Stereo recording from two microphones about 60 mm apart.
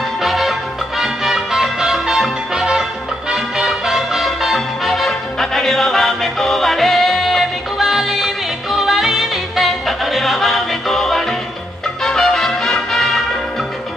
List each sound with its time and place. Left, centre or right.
0.2 s music: centre